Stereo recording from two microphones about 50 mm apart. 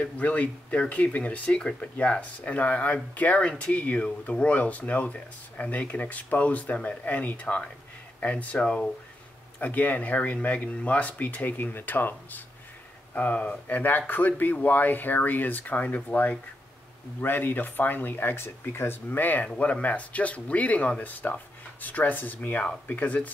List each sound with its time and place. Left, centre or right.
0.0 s speech: left
1.6 s speech: centre
2.0 s speech: left
9.6 s speech: left